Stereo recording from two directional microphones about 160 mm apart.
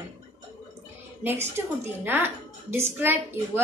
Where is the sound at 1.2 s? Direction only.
15° right (ahead or behind).